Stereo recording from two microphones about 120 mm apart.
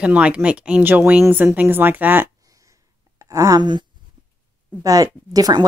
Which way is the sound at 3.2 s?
25° right (ahead or behind).